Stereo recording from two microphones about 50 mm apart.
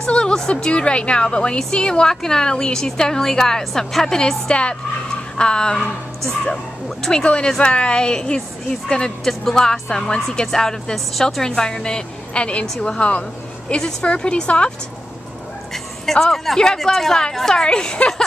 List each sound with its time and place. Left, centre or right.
0.0 s a woman's voice: centre
15.7 s a woman's voice: centre